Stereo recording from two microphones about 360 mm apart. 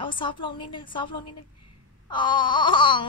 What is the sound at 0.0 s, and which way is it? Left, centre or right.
Speech, centre.